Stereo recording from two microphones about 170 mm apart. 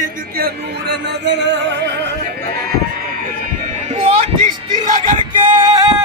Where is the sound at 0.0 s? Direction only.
70° right (ahead or behind); by 1.9 s 90° right.